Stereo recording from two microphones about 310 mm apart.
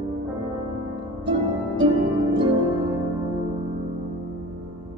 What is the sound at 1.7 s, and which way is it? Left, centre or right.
Harp, centre.